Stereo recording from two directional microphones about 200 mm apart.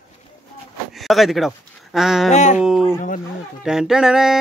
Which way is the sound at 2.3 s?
35° left (ahead or behind).